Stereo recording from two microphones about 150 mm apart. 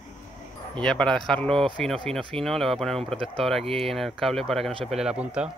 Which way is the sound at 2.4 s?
Centre (ahead or behind).